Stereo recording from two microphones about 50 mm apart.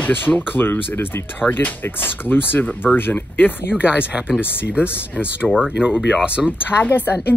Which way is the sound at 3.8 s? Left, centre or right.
Right.